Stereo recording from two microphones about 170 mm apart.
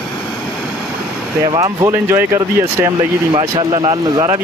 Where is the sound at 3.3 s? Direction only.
30° right (ahead or behind).